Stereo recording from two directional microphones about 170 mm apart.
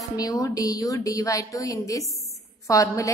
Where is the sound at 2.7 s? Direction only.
20° left (ahead or behind).